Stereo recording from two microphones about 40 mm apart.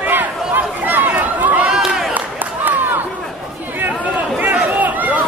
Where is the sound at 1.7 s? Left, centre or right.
Centre.